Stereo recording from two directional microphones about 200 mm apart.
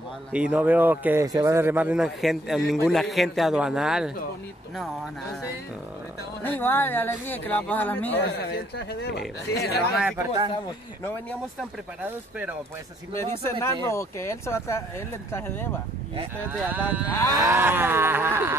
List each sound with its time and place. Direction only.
0.3 s a man's voice: 5° right (ahead or behind)
6.4 s speech: 10° left (ahead or behind)
8.4 s speech: 55° left (ahead or behind)
10.1 s speech: 20° right (ahead or behind)
12.0 s a sound: 5° right (ahead or behind)
13.1 s speech: 15° left (ahead or behind)
16.4 s a sound: 10° right (ahead or behind)